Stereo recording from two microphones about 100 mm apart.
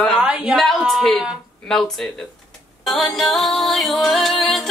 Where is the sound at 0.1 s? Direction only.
10° right (ahead or behind).